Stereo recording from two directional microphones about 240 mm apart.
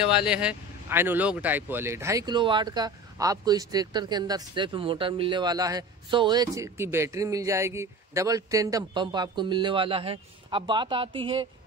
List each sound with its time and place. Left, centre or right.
0.0 s speech: centre; by 11.4 s right